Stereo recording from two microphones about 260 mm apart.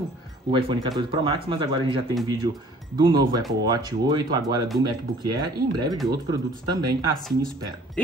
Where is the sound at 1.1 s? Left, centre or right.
Centre.